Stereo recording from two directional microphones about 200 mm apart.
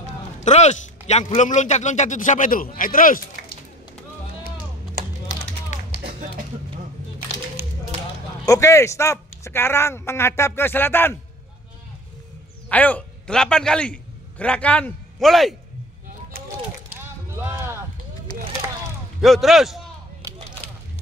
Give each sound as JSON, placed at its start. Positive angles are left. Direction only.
{"t": 0.4, "sound": "a man's voice", "side_deg": 35}
{"t": 5.0, "sound": "typing", "side_deg": -50}
{"t": 8.5, "sound": "speech", "side_deg": 15}
{"t": 12.6, "sound": "a man's voice", "side_deg": 5}
{"t": 17.0, "sound": "a sound", "side_deg": -10}
{"t": 19.2, "sound": "a man's voice", "side_deg": 0}